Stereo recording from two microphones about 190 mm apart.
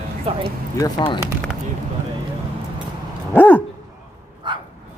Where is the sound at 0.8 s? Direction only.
25° left (ahead or behind).